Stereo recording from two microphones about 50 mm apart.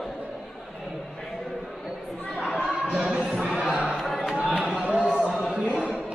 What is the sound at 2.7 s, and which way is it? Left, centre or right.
Music, right.